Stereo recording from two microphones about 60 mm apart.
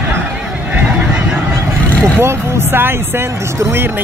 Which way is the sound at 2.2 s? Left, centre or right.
Right.